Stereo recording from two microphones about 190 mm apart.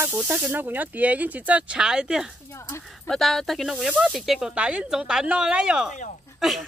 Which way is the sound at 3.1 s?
Centre (ahead or behind).